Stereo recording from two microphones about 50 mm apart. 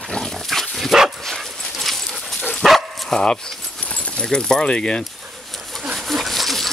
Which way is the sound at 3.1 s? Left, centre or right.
Centre.